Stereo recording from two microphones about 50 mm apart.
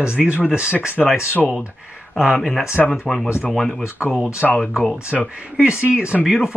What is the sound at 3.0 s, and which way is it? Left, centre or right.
Speech, centre.